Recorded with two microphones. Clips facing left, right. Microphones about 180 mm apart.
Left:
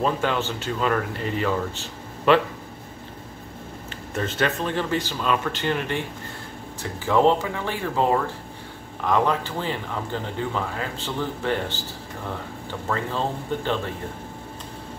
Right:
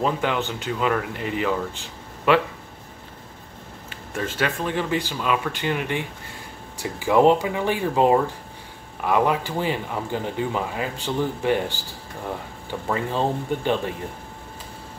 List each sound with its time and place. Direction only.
0.0 s speech: 15° right (ahead or behind)
3.9 s speech: 10° right (ahead or behind)
12.8 s speech: 15° right (ahead or behind)